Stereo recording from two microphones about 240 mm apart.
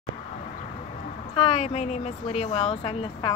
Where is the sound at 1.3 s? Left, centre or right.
Left.